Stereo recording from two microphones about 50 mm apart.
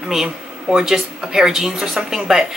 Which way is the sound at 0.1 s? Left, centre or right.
Centre.